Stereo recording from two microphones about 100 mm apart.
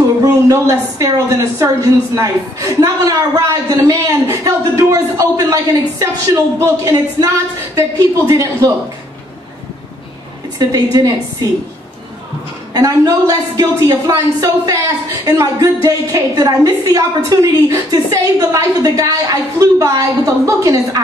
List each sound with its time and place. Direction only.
0.2 s a woman's voice: 35° right (ahead or behind)
8.3 s a woman's voice: 30° right (ahead or behind)
10.6 s a woman's voice: 40° right (ahead or behind)
12.7 s a woman's voice: 40° right (ahead or behind)